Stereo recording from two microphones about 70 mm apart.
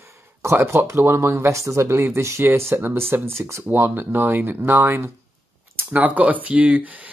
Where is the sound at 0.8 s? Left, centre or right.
Right.